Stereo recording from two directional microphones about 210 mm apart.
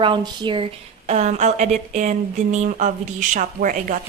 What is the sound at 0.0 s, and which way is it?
A woman's voice, 20° right (ahead or behind).